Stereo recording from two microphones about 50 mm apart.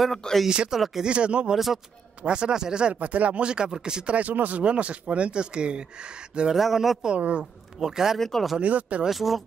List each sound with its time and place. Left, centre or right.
0.0 s speech: centre
0.5 s speech: centre
0.7 s speech: centre
1.0 s speech: right
1.5 s speech: centre
2.2 s speech: centre
2.9 s speech: right
6.5 s speech: centre
7.2 s speech: right
7.8 s speech: centre
8.2 s speech: centre
8.5 s speech: right
9.0 s speech: centre